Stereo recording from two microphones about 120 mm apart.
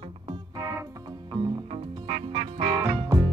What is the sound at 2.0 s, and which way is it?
Music, 55° right (ahead or behind).